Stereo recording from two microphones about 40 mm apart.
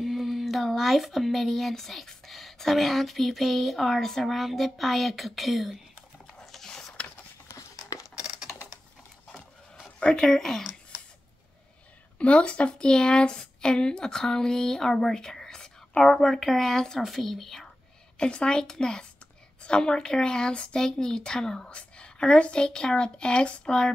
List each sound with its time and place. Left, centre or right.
0.0 s child singing: centre
0.7 s speech: centre
6.4 s a sound: centre
6.7 s a sound: centre
9.9 s a sound: left
10.2 s speech: centre
12.2 s a woman's voice: left
16.0 s speech: centre
17.0 s speech: centre
18.1 s a woman's voice: left